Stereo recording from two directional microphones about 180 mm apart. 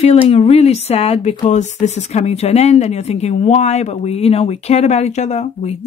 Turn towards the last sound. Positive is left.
turn(degrees=35)  # may be behind; listen again after turning